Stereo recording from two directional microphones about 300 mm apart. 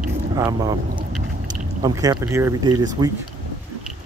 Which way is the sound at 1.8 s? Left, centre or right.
Centre.